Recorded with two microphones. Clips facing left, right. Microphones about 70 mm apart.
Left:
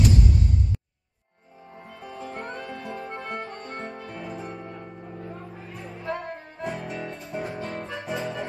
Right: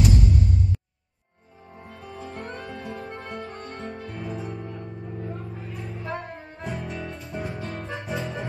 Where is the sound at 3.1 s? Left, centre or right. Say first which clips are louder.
Left 2 dB; left.